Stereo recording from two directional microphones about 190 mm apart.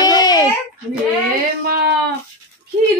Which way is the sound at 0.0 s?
20° left (ahead or behind).